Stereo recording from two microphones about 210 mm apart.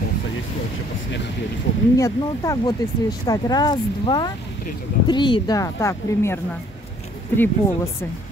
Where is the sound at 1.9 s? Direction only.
15° left (ahead or behind).